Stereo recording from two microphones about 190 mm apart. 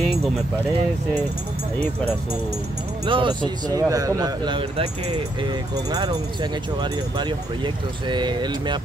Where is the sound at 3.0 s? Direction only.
25° right (ahead or behind).